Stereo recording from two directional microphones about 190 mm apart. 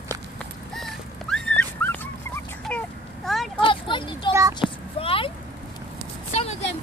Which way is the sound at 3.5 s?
25° left (ahead or behind).